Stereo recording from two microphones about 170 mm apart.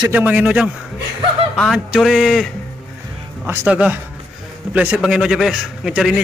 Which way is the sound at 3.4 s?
15° right (ahead or behind).